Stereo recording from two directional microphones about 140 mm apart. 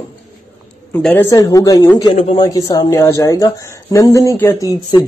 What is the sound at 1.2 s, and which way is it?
A man's voice, 25° left (ahead or behind).